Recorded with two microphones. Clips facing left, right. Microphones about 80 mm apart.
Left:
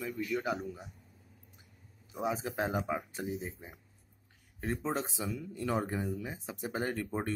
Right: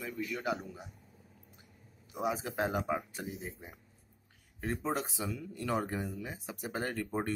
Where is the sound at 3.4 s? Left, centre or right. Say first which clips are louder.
Left 2 dB; centre.